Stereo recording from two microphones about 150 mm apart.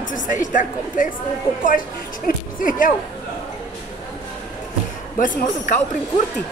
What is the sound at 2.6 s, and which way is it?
Speech, 65° left (ahead or behind).